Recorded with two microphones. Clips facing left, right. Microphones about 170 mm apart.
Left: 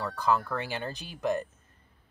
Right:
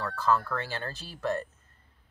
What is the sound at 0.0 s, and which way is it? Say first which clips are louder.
Speech: even; 15° left (ahead or behind).